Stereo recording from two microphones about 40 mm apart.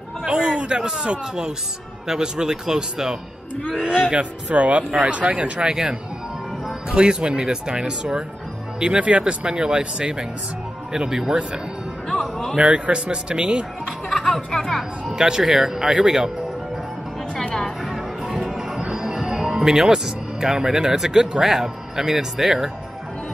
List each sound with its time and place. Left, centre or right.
0.3 s a sound: right
0.7 s a man's voice: right
4.5 s a man's voice: right; by 11.3 s centre
12.1 s speech: centre
12.5 s a man's voice: right
14.0 s speech: centre
15.0 s speech: centre
17.8 s music: centre
19.2 s speech: centre